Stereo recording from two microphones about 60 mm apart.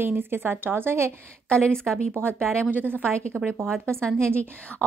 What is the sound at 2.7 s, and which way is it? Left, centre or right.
Speech, right.